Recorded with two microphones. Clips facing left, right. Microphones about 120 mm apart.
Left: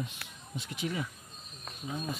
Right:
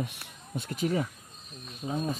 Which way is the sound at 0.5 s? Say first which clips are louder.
Right 6 dB; 45° right (ahead or behind).